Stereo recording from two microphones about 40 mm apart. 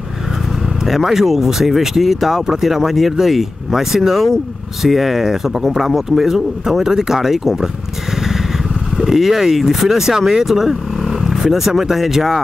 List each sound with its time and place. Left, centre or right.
0.8 s speech: centre
8.9 s speech: centre